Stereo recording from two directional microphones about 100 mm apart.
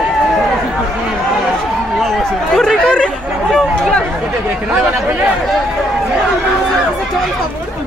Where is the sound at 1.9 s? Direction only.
Centre (ahead or behind).